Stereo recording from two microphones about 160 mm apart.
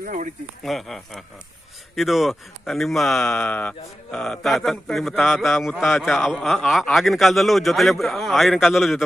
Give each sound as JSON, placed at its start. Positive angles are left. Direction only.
{"t": 0.0, "sound": "speech", "side_deg": -55}
{"t": 0.7, "sound": "speech", "side_deg": 0}